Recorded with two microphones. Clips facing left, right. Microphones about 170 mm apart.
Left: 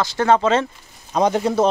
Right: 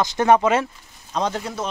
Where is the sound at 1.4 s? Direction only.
30° left (ahead or behind).